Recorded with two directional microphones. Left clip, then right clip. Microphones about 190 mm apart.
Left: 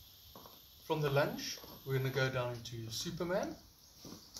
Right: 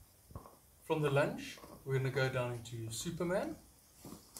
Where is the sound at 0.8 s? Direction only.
Centre (ahead or behind).